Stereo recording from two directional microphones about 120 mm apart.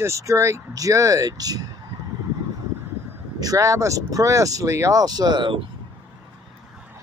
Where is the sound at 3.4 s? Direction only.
30° right (ahead or behind).